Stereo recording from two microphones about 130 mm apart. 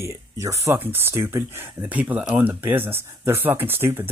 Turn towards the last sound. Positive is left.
turn(degrees=-20)  # may be behind; listen again after turning